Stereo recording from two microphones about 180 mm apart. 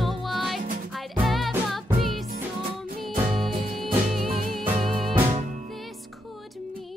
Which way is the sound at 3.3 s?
Centre (ahead or behind).